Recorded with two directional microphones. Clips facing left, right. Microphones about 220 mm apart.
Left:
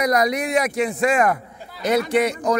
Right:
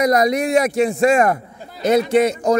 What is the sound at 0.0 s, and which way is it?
A man's voice, 25° right (ahead or behind).